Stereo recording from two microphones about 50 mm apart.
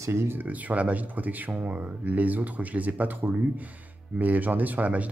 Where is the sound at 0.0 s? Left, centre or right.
Right.